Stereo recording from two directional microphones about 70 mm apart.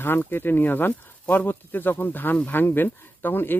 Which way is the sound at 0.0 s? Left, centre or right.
Left.